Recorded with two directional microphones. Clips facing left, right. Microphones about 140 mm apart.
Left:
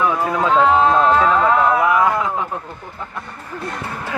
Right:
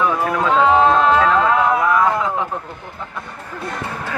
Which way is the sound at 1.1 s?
5° left (ahead or behind).